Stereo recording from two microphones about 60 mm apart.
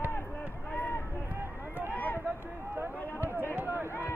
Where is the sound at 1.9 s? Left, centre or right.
Left.